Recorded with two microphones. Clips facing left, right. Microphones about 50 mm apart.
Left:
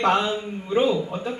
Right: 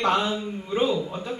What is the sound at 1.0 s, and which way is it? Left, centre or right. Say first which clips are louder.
Speech: left 2 dB; centre.